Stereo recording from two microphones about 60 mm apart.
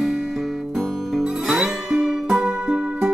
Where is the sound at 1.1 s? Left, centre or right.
Centre.